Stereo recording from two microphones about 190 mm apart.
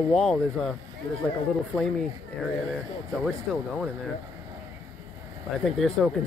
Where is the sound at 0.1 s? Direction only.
Centre (ahead or behind).